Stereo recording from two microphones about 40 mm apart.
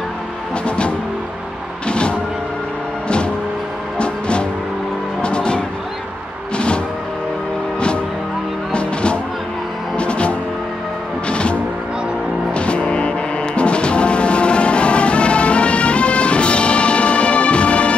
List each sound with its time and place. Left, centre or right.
0.7 s music: left
1.9 s vehicle: left
4.0 s music: left
8.7 s music: left
12.5 s music: left